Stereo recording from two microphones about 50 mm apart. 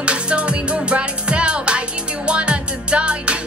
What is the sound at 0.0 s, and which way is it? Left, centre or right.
Music, right.